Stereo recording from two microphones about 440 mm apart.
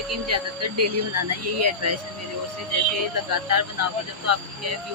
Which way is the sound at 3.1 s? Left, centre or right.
Right.